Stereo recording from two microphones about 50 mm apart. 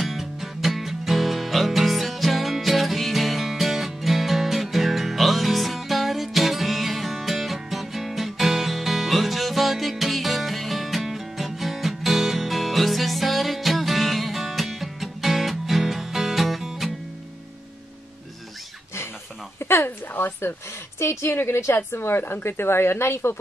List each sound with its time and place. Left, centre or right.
0.0 s music: centre
19.6 s a sound: left
21.0 s a woman's voice: left
21.7 s a woman's voice: left